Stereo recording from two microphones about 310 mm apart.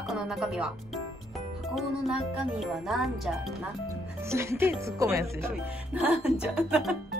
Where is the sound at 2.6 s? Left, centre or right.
Centre.